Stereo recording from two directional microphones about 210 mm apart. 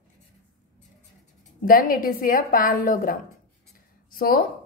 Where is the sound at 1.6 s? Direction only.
40° left (ahead or behind).